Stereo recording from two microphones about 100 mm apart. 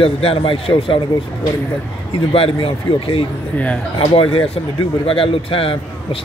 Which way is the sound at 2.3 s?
65° left (ahead or behind).